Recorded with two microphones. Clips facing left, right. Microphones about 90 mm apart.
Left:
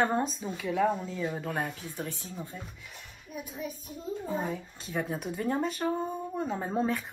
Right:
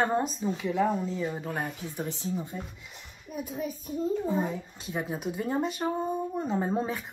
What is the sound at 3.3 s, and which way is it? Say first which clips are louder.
Speech: right 5 dB; 45° right (ahead or behind).